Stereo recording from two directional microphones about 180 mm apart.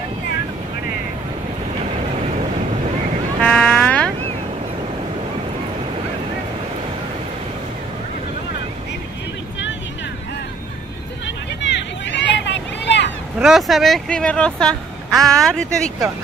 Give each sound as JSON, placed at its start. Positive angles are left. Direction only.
{"t": 3.4, "sound": "mosquito", "side_deg": 5}
{"t": 11.6, "sound": "a sound", "side_deg": 80}
{"t": 13.4, "sound": "speech", "side_deg": 0}